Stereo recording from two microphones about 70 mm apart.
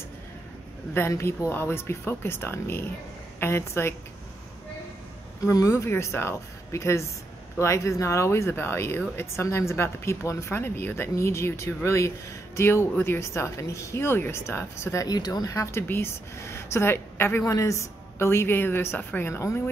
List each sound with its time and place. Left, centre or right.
0.9 s speech: left
5.4 s speech: left
5.7 s speech: left
15.0 s speech: left
15.5 s speech: left
17.5 s speech: left